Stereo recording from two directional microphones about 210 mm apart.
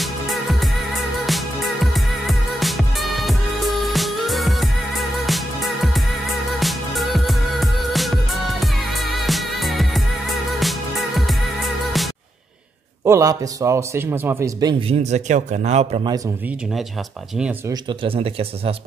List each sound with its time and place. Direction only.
0.0 s music: centre (ahead or behind)
13.0 s a man's voice: 15° right (ahead or behind)
17.4 s speech: 5° right (ahead or behind)
17.8 s a man's voice: 25° right (ahead or behind)